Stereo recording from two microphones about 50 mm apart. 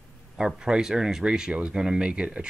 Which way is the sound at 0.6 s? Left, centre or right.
Centre.